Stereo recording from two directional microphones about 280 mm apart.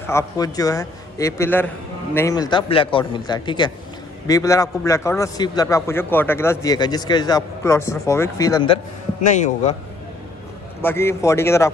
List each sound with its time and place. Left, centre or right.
0.0 s a man's voice: centre
9.2 s a man's voice: left
10.8 s a man's voice: centre